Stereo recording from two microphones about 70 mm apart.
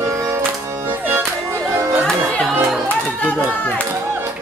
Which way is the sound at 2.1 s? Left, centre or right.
Centre.